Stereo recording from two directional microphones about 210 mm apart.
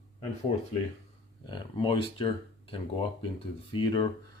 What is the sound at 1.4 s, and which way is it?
Speech, 20° left (ahead or behind).